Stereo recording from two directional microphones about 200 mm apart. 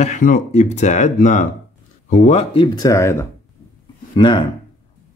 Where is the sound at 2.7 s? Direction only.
15° left (ahead or behind).